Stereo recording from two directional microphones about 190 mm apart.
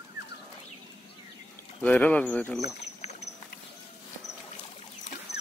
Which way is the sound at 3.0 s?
35° left (ahead or behind).